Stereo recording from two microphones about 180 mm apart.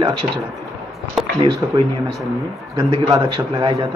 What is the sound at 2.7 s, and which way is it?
Speech, 20° right (ahead or behind).